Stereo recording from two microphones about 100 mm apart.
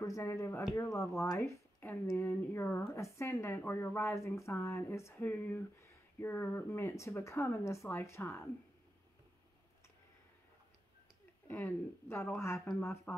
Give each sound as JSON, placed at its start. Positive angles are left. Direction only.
{"t": 0.2, "sound": "a woman's voice", "side_deg": 25}
{"t": 1.8, "sound": "a woman's voice", "side_deg": 20}
{"t": 11.4, "sound": "a woman's voice", "side_deg": 20}